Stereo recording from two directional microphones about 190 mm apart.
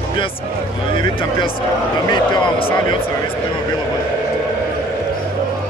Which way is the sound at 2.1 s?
25° left (ahead or behind).